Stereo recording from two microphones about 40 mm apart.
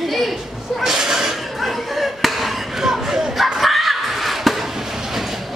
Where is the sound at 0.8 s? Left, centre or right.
Centre.